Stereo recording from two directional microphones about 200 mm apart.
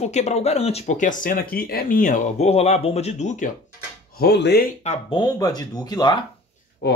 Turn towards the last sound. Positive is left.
turn(degrees=55)  # may be behind; listen again after turning